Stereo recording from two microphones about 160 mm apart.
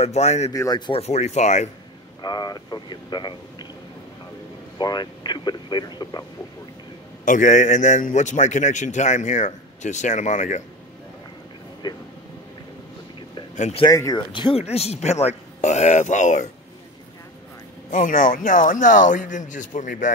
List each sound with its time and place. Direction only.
0.0 s a man's voice: 45° left (ahead or behind)
0.5 s speech: 25° left (ahead or behind)
1.0 s a man's voice: 45° left (ahead or behind)
2.2 s speech: 25° left (ahead or behind)
4.7 s speech: 25° left (ahead or behind)
7.2 s a man's voice: 50° left (ahead or behind)
11.8 s speech: 25° left (ahead or behind)
13.6 s speech: 40° left (ahead or behind)
13.8 s a man's voice: 20° left (ahead or behind); by 16.4 s 50° left (ahead or behind)
17.9 s a man's voice: 55° left (ahead or behind)